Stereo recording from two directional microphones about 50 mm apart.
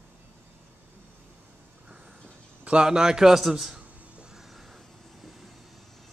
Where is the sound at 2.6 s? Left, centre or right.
Centre.